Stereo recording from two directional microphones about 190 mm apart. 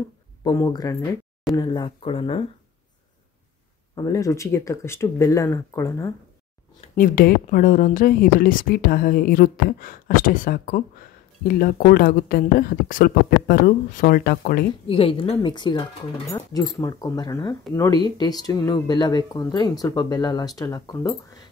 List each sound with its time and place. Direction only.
0.4 s speech: 20° left (ahead or behind)
3.9 s speech: 20° left (ahead or behind)
7.0 s a woman's voice: 50° left (ahead or behind)
14.9 s speech: 30° left (ahead or behind)